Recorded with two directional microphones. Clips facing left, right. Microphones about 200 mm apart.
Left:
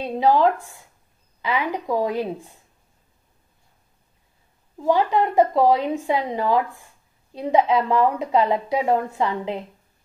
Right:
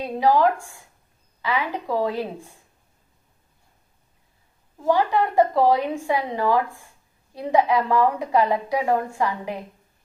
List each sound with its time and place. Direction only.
0.0 s a woman's voice: 25° left (ahead or behind)
4.8 s a woman's voice: 20° left (ahead or behind)